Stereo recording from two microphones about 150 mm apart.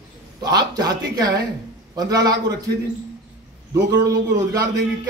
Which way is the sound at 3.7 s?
25° right (ahead or behind).